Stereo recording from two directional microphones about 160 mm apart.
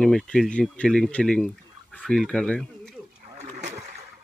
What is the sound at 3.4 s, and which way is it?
Splash, 45° right (ahead or behind).